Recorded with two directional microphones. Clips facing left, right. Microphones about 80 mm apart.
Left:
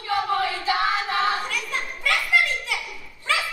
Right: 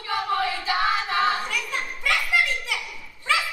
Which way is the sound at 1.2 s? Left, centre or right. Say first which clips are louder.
Even; right.